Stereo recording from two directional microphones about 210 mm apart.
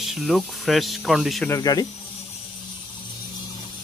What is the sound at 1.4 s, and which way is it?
Speech, 15° left (ahead or behind).